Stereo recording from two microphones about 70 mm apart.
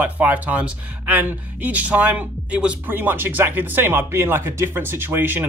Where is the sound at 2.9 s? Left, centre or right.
Right.